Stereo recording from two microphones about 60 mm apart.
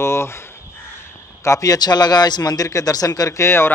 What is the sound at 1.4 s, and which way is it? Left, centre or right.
Speech, left.